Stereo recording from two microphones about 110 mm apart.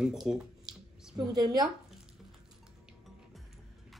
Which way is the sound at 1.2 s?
35° right (ahead or behind).